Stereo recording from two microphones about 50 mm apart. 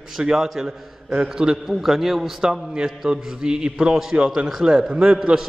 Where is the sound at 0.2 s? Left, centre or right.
Right; by 2.3 s centre.